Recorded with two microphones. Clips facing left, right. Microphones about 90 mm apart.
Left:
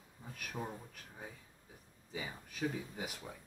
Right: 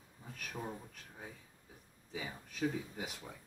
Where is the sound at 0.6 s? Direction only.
5° left (ahead or behind).